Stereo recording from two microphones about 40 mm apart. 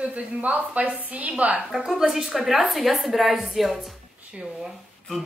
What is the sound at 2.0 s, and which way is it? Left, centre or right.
A woman's voice, centre.